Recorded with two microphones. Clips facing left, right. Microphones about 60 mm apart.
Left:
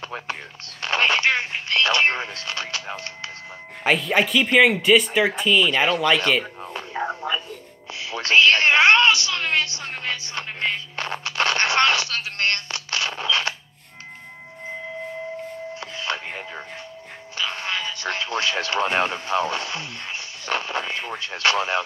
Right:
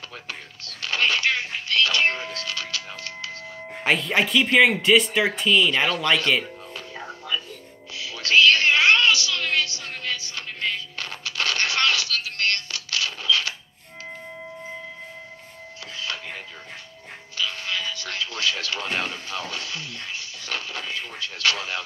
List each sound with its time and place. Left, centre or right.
0.1 s speech: left
3.8 s speech: centre
6.4 s radio: left
8.0 s a sound: left
16.0 s music: left
17.4 s speech: left